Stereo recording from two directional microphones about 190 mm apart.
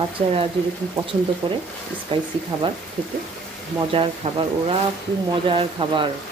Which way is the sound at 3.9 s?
30° right (ahead or behind).